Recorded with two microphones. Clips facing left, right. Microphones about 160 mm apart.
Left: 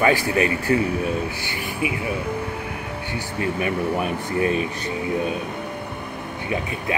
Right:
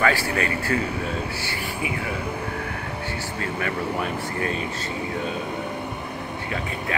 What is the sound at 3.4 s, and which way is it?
Speech, 20° left (ahead or behind).